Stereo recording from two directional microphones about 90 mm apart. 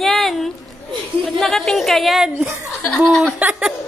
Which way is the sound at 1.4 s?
5° left (ahead or behind).